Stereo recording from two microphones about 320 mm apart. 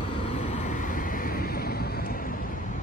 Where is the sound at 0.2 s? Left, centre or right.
Centre.